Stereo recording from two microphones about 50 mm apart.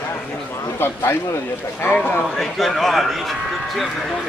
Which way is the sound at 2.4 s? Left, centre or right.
Centre.